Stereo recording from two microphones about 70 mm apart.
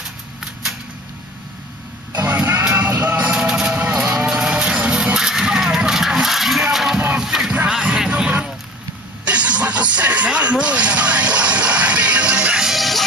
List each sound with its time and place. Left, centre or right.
2.2 s music: right
2.8 s vehicle: right
4.3 s music: centre
7.5 s music: centre
9.2 s a sound: centre